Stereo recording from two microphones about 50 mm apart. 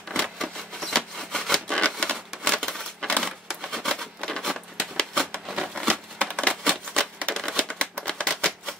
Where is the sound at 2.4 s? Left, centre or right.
Centre.